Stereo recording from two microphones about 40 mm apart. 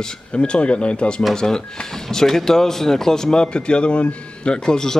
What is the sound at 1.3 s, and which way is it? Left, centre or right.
Speech, centre.